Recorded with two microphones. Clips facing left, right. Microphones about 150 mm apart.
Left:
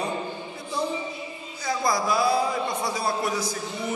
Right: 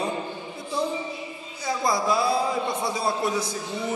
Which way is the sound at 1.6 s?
25° right (ahead or behind).